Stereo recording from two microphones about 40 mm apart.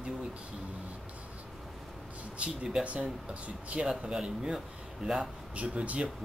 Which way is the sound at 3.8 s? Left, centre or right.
Centre.